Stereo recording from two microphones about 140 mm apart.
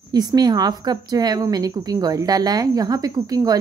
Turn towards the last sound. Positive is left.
turn(degrees=-25)  # may be behind; listen again after turning